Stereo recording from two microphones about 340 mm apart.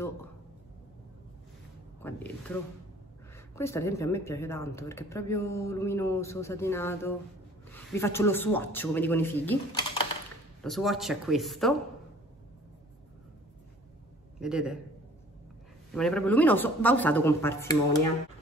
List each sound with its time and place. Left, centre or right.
2.0 s a man's voice: centre
14.4 s a man's voice: centre
15.9 s a man's voice: centre